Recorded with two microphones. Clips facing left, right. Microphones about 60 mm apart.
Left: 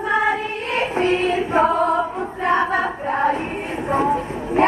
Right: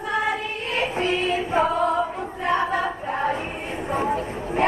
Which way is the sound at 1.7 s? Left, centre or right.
Left.